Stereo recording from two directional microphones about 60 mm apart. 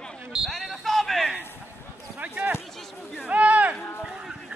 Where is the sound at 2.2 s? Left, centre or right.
Right.